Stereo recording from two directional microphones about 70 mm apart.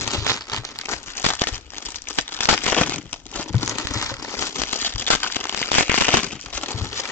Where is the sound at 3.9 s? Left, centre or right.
Left.